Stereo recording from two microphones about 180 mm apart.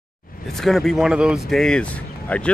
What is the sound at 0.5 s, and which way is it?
Speech, centre (ahead or behind).